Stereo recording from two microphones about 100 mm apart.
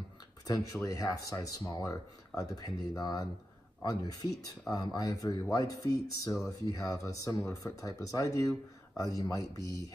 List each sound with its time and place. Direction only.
0.8 s speech: 40° left (ahead or behind)